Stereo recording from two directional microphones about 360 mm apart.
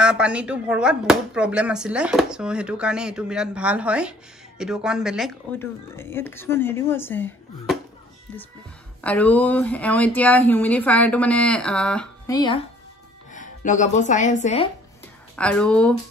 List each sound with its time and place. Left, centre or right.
0.0 s speech: centre
9.0 s speech: centre
15.3 s speech: centre